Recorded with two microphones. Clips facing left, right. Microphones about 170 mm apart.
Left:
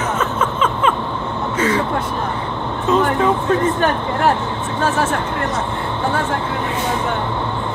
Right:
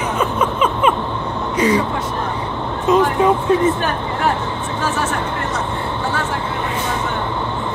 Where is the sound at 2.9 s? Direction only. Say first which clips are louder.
Right 2 dB; 15° right (ahead or behind).